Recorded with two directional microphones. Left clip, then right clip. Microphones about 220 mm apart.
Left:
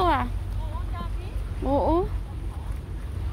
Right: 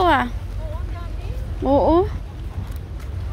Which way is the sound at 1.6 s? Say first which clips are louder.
Right 7 dB; 15° right (ahead or behind).